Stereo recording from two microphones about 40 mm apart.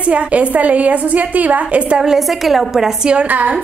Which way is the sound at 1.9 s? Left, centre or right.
Centre.